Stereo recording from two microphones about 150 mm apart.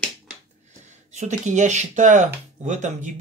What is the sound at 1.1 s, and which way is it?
Speech, 50° right (ahead or behind).